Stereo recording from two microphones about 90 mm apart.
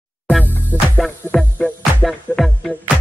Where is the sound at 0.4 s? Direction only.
20° right (ahead or behind).